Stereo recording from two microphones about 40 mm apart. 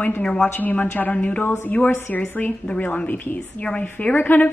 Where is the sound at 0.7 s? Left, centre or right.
Left.